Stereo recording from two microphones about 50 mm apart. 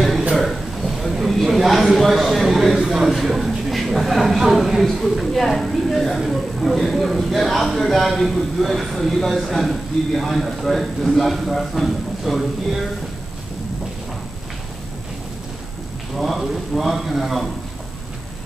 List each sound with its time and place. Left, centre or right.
0.4 s a sound: centre
6.2 s a man's voice: centre
16.2 s a man's voice: centre